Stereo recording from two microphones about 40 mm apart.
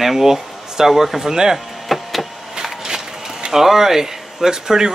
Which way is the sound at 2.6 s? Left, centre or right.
Centre.